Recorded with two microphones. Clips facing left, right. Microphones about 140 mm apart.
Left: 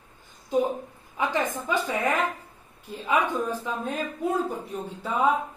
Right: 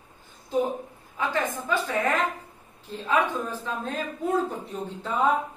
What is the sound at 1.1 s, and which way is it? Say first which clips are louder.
Speech: left 1 dB; 20° left (ahead or behind).